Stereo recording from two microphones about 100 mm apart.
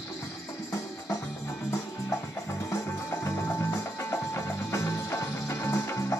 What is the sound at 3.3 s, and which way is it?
Music, 25° left (ahead or behind).